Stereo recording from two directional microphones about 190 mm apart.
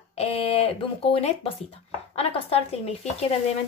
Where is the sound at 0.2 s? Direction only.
30° left (ahead or behind).